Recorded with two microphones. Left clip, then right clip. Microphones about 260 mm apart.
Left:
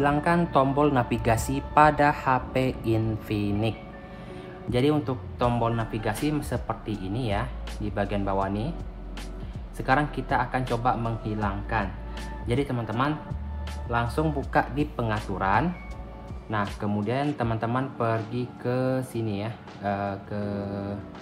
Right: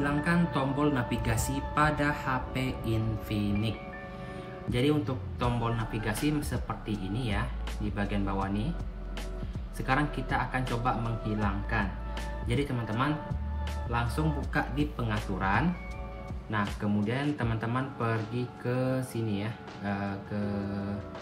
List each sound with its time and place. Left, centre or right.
0.0 s speech: centre
4.7 s a man's voice: centre
9.8 s a man's voice: centre
16.8 s a man's voice: centre